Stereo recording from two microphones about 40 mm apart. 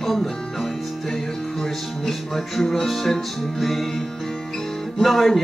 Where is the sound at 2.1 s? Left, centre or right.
Centre.